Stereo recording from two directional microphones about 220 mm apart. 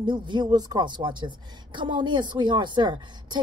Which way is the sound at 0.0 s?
20° right (ahead or behind).